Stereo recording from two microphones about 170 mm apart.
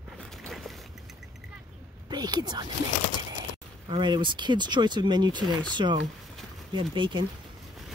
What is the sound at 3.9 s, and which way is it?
Speech, 30° right (ahead or behind).